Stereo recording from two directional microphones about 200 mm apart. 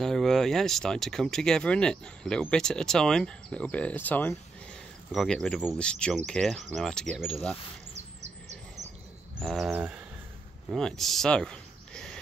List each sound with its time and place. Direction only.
0.0 s speech: centre (ahead or behind)
7.9 s bird: 35° right (ahead or behind)
9.4 s speech: centre (ahead or behind)